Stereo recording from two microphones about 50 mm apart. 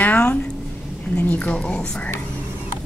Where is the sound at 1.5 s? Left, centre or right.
Centre.